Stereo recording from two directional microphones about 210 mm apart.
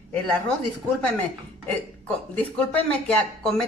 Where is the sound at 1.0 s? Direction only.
5° left (ahead or behind).